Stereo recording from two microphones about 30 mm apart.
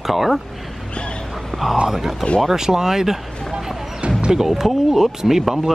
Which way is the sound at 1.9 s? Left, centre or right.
Centre.